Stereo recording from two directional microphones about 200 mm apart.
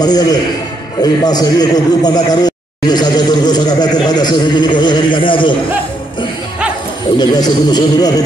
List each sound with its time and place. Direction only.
0.0 s a man's voice: 20° left (ahead or behind)
7.2 s a man's voice: 20° left (ahead or behind)